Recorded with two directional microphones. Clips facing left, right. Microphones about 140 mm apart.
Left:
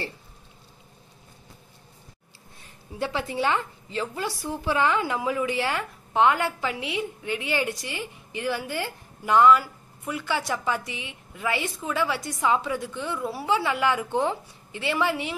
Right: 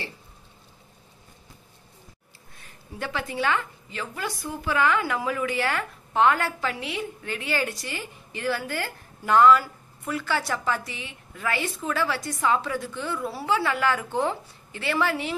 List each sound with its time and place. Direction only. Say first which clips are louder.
3.0 s a woman's voice: left 2 dB; 25° left (ahead or behind)